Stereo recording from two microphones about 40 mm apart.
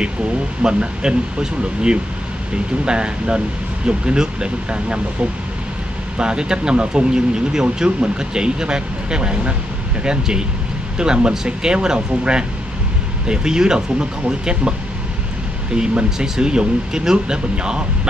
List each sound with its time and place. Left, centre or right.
0.6 s speech: right
6.1 s speech: right
15.7 s speech: right